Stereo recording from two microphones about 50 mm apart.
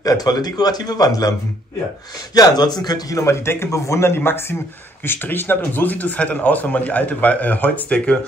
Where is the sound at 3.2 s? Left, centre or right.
Left.